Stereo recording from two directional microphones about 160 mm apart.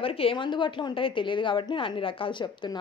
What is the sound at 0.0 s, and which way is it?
A woman's voice, 35° left (ahead or behind).